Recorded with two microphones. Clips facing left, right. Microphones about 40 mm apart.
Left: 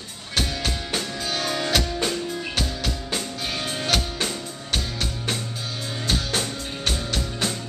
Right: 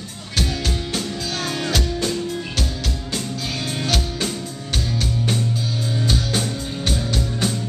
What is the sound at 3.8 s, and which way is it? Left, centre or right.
Music, centre.